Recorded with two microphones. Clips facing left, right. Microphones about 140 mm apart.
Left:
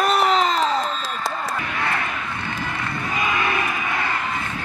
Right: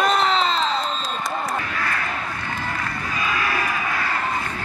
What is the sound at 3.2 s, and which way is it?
Crowd, 20° left (ahead or behind).